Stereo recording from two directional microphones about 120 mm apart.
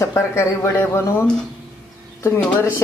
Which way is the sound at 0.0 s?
25° left (ahead or behind).